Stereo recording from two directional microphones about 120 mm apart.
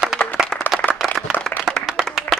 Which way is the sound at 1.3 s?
15° left (ahead or behind).